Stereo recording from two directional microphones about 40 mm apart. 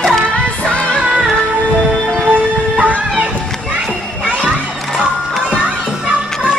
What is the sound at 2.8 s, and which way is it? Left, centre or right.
Music, right.